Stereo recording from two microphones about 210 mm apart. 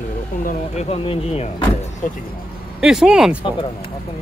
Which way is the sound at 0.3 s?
40° left (ahead or behind).